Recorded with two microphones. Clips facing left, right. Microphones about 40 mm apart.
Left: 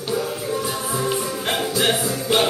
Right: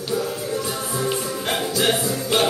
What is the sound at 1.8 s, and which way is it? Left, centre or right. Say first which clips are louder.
Music: right 1 dB; centre.